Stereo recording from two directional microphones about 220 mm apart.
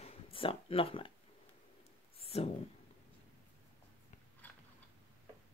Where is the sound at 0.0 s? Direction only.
25° left (ahead or behind).